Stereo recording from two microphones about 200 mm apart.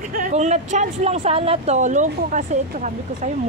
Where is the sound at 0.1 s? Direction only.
40° right (ahead or behind).